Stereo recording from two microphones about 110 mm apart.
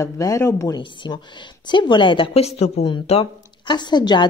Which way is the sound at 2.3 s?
70° left (ahead or behind).